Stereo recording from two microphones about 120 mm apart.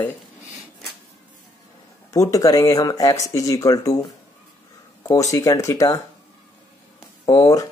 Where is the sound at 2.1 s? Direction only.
30° left (ahead or behind).